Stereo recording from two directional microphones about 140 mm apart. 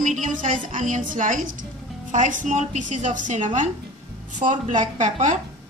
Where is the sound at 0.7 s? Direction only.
65° right (ahead or behind).